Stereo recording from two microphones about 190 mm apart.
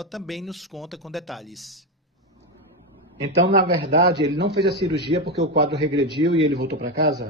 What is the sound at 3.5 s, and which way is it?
A man's voice, 60° right (ahead or behind).